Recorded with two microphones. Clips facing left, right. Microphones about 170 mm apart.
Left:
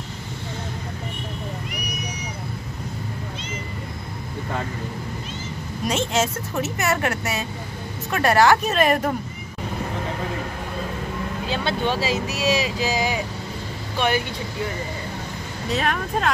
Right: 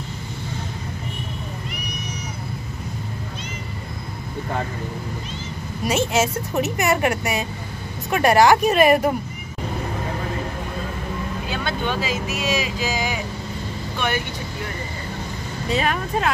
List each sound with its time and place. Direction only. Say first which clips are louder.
5.9 s a woman's voice: right 2 dB; 10° right (ahead or behind)
11.4 s speech: left 3 dB; 30° left (ahead or behind)
15.7 s speech: right 1 dB; 5° right (ahead or behind)